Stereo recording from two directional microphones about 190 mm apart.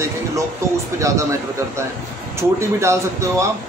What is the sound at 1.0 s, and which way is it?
Speech, 15° right (ahead or behind).